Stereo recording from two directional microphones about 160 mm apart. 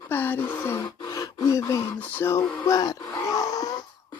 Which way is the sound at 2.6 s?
20° left (ahead or behind).